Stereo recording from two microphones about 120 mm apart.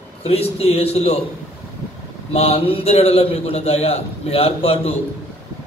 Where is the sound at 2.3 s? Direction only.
55° left (ahead or behind).